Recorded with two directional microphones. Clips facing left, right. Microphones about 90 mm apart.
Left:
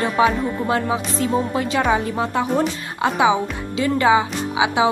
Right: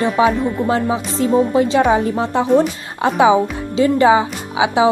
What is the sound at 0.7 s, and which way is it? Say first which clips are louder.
A woman's voice: right 3 dB; 25° right (ahead or behind).